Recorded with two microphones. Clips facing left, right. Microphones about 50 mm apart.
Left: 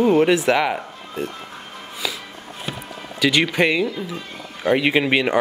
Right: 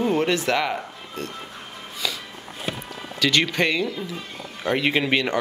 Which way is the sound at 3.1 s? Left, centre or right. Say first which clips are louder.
Left 3 dB; centre.